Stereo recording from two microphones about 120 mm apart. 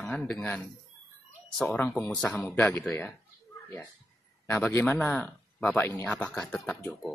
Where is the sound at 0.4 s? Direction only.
15° left (ahead or behind).